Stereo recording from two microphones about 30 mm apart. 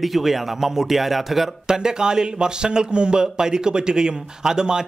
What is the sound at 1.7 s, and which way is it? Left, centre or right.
Speech, right.